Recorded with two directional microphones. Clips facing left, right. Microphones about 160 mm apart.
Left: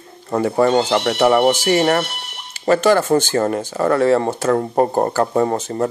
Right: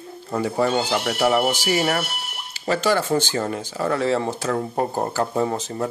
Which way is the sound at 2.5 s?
50° left (ahead or behind).